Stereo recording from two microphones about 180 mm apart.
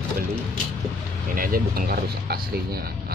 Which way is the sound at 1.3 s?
50° right (ahead or behind).